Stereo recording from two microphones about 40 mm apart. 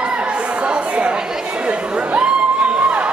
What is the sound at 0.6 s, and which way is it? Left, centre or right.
Chatter, right.